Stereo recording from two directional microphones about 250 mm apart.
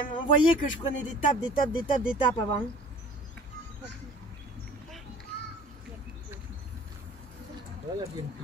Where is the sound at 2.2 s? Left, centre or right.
Centre.